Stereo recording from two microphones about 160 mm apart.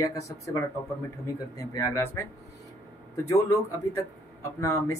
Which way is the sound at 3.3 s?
20° left (ahead or behind).